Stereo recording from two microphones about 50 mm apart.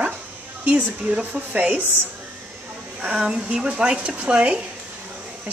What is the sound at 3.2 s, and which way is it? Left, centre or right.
Speech, centre.